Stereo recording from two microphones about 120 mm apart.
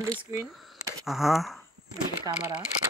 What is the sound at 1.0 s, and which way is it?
Speech, centre (ahead or behind).